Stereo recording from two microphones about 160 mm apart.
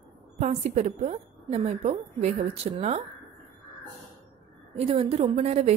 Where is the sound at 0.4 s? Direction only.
45° right (ahead or behind).